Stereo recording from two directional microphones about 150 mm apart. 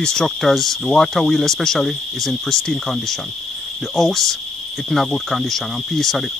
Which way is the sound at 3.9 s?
Centre (ahead or behind).